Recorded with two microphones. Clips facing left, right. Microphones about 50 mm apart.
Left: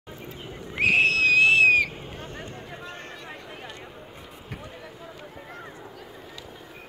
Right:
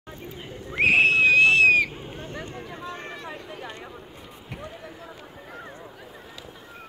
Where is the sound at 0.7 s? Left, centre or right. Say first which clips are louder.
Right 2 dB; right.